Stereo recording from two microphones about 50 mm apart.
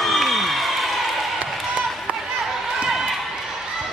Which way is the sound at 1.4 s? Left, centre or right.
Right.